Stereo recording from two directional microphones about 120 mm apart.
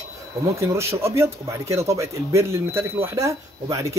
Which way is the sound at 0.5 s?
25° right (ahead or behind).